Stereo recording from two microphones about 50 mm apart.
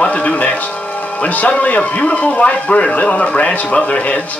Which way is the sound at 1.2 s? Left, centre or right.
Left.